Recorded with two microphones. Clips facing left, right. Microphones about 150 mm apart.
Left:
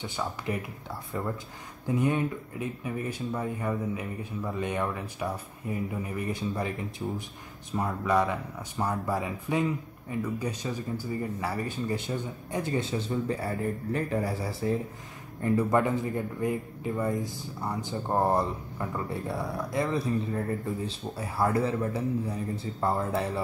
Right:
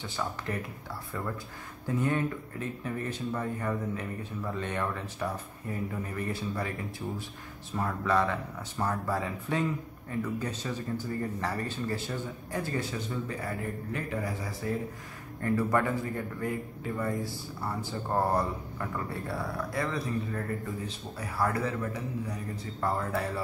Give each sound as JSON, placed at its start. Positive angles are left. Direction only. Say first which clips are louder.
{"t": 0.0, "sound": "speech", "louder": "left 2 dB", "side_deg": 15}
{"t": 1.9, "sound": "a man's voice", "louder": "left 2 dB", "side_deg": 15}